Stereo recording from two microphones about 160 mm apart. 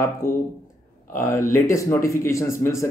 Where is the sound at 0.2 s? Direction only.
15° left (ahead or behind).